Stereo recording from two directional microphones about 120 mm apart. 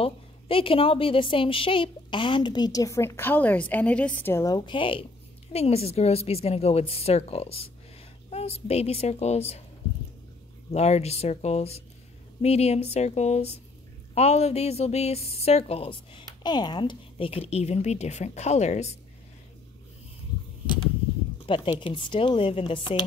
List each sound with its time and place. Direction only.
0.0 s a woman's voice: 50° left (ahead or behind)
5.5 s a woman's voice: 60° left (ahead or behind)
10.7 s a woman's voice: 65° left (ahead or behind)
20.6 s a sound: 40° left (ahead or behind)
21.5 s speech: 45° left (ahead or behind)